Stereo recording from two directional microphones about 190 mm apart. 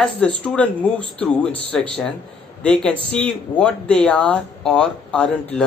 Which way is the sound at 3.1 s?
5° left (ahead or behind).